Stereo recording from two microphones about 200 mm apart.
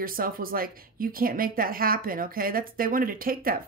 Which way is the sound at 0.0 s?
45° right (ahead or behind).